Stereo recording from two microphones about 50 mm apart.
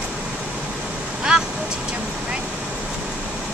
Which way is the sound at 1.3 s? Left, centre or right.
Centre.